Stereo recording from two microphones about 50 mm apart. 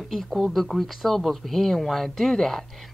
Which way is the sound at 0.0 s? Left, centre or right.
Centre.